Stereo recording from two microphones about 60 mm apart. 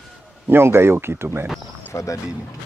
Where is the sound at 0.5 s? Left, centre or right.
Right.